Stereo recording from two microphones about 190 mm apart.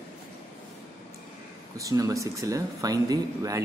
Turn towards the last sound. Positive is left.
turn(degrees=-20)  # may be behind; listen again after turning